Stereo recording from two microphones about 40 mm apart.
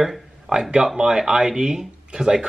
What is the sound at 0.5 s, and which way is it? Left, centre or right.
Speech, centre.